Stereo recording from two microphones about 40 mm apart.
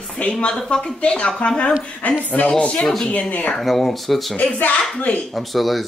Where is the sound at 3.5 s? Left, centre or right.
Centre.